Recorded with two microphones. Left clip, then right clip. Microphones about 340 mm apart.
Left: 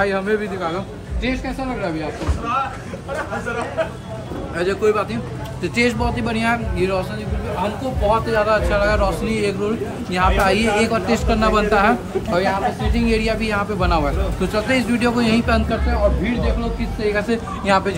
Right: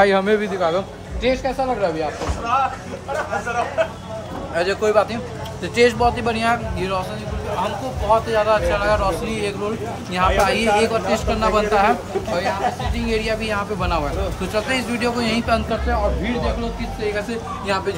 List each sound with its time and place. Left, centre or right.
0.0 s a man's voice: right
4.6 s speech: centre
8.1 s speech: centre
17.0 s speech: centre